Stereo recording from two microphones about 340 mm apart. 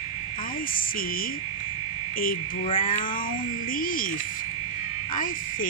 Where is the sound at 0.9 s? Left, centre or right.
Left.